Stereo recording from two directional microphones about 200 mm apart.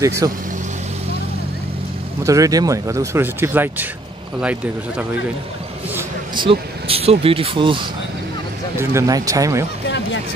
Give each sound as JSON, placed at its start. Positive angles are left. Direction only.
{"t": 0.0, "sound": "speech", "side_deg": -15}
{"t": 2.2, "sound": "speech", "side_deg": -15}
{"t": 6.3, "sound": "speech", "side_deg": -25}